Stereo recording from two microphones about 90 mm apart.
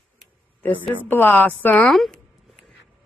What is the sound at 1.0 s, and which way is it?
Speech, 20° left (ahead or behind).